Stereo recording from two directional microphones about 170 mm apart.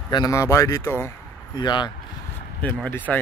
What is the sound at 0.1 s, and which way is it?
A man's voice, 20° left (ahead or behind).